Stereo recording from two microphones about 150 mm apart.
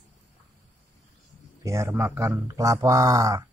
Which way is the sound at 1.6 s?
20° right (ahead or behind).